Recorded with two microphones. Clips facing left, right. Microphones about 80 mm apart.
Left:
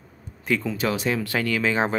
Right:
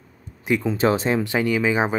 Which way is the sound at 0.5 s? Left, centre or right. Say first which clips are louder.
Right 3 dB; centre.